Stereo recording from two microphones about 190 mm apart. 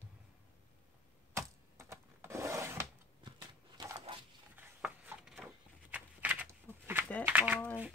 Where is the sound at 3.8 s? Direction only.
20° right (ahead or behind).